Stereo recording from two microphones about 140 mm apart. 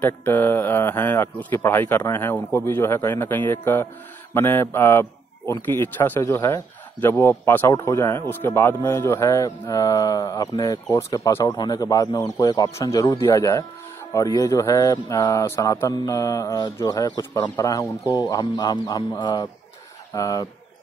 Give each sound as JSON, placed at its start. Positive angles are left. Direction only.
{"t": 0.0, "sound": "a man's voice", "side_deg": 15}